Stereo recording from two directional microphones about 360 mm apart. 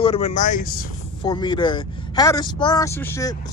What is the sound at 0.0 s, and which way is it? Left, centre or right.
A woman's voice, centre.